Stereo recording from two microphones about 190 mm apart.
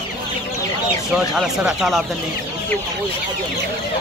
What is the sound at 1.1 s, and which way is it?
Speech, 5° right (ahead or behind).